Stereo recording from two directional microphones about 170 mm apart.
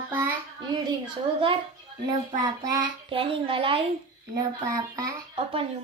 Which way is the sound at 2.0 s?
20° right (ahead or behind).